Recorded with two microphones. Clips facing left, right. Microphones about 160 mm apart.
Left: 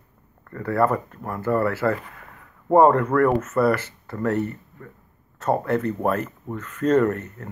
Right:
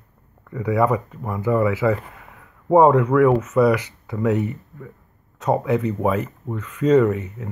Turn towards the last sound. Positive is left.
turn(degrees=-5)  # may be behind; listen again after turning